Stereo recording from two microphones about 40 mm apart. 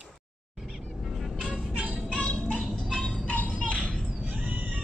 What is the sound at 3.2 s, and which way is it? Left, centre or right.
Music, left.